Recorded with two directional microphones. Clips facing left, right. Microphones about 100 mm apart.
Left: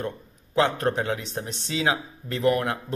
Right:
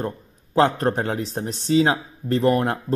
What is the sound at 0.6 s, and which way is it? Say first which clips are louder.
Speech: right 4 dB; 40° right (ahead or behind).